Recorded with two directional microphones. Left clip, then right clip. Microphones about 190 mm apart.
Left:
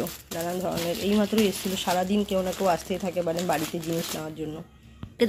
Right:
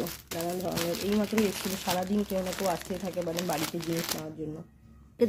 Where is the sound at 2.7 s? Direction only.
20° left (ahead or behind).